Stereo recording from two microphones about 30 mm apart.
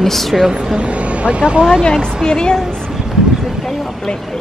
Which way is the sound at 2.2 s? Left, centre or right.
Left.